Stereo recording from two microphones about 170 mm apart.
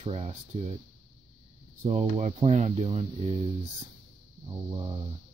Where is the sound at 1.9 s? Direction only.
40° right (ahead or behind).